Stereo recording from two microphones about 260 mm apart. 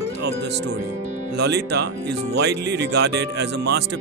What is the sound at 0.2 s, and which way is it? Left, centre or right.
Speech, right.